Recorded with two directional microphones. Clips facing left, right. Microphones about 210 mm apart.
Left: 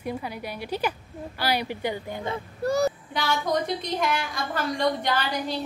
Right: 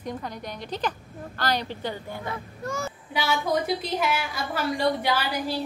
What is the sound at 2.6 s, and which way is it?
Speech, 35° left (ahead or behind).